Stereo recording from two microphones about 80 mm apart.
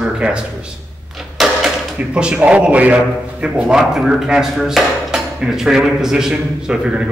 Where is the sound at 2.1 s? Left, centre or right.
Centre.